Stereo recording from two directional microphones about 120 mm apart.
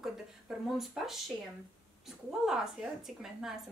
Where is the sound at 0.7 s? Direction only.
5° right (ahead or behind).